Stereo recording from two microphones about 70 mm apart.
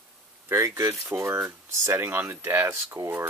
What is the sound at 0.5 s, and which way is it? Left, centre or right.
Speech, right.